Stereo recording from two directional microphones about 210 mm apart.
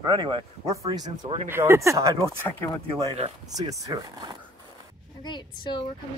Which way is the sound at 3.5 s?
15° right (ahead or behind).